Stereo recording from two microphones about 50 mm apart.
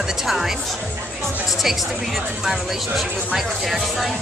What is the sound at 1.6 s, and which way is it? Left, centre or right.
A woman's voice, centre.